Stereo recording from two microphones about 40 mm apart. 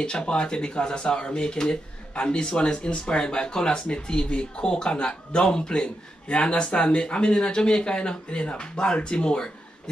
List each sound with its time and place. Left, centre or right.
0.0 s speech: left